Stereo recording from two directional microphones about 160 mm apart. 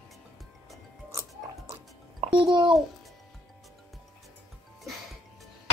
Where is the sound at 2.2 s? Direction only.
35° right (ahead or behind).